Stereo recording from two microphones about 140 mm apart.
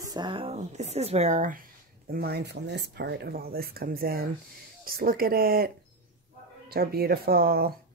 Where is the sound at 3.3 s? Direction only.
90° right.